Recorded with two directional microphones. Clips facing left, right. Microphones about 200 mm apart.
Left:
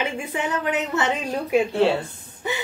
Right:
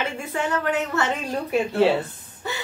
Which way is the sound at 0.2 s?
15° left (ahead or behind).